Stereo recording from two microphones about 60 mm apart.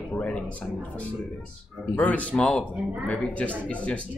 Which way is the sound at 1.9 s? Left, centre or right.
Left.